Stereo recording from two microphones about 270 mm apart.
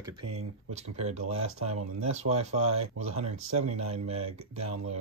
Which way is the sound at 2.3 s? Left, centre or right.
Right.